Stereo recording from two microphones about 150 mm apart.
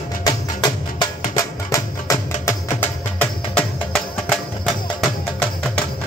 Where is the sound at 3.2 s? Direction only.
5° left (ahead or behind).